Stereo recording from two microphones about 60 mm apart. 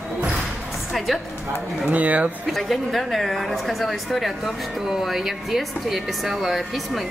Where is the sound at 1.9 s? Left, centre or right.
Right.